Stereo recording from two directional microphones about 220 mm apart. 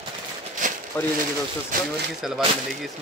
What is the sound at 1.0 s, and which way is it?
Speech, 10° left (ahead or behind).